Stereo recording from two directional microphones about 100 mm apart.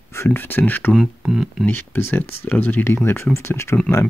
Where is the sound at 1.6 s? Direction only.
20° left (ahead or behind).